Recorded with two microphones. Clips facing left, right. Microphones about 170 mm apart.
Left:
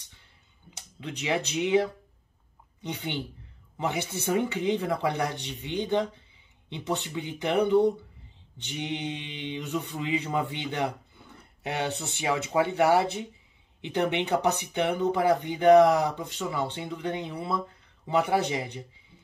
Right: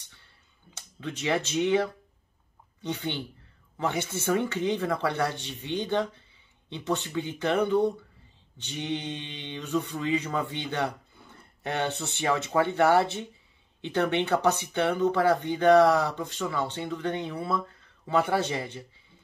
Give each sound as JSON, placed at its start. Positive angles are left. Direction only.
{"t": 1.0, "sound": "speech", "side_deg": 15}